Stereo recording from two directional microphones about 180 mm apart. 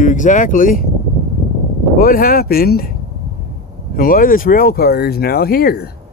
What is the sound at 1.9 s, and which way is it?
Speech, 55° left (ahead or behind).